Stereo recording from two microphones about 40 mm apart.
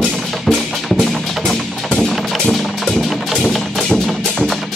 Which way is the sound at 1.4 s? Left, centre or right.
Centre.